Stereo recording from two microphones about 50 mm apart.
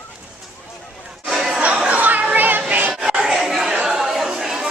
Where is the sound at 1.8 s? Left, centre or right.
Right.